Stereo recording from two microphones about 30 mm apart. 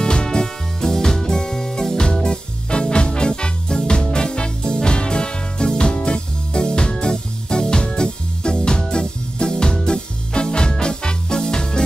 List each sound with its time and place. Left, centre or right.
0.0 s music: left